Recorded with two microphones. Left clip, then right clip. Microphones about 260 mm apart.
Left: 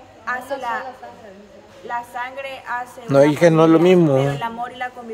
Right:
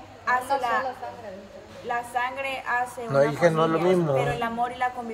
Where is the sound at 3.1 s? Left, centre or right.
Left.